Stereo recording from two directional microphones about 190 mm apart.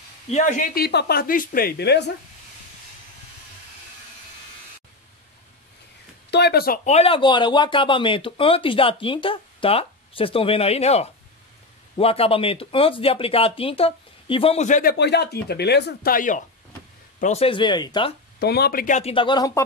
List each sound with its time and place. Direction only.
0.3 s speech: 40° left (ahead or behind); by 2.1 s 60° left (ahead or behind)
6.3 s speech: 60° left (ahead or behind); by 18.1 s 25° left (ahead or behind)
18.4 s speech: 55° left (ahead or behind); by 19.6 s 20° left (ahead or behind)